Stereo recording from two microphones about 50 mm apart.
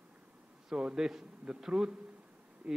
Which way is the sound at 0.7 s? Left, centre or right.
Centre.